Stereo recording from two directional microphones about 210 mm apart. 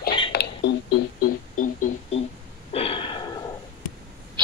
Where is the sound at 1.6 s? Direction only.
35° left (ahead or behind).